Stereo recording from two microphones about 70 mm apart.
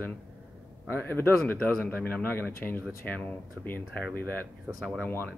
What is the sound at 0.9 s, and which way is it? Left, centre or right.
Speech, left.